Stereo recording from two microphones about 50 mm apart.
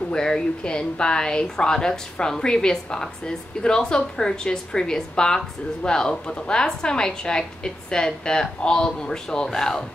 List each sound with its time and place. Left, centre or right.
0.1 s speech: centre